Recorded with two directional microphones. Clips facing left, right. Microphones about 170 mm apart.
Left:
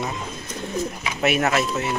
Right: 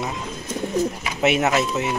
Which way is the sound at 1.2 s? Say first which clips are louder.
Right 2 dB; 20° right (ahead or behind).